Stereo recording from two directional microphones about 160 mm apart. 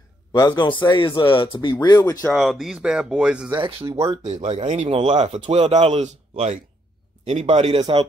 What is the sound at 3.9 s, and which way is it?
Speech, 20° right (ahead or behind).